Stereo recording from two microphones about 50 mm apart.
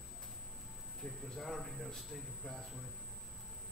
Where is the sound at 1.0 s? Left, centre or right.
Centre.